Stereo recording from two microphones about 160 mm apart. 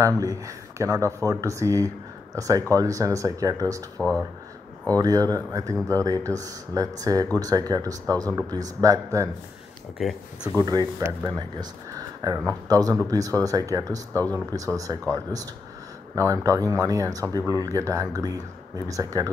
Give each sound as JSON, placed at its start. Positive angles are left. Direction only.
{"t": 0.0, "sound": "speech", "side_deg": -20}
{"t": 4.9, "sound": "speech", "side_deg": -25}
{"t": 9.9, "sound": "speech", "side_deg": 0}
{"t": 10.5, "sound": "speech", "side_deg": -25}
{"t": 16.2, "sound": "speech", "side_deg": -20}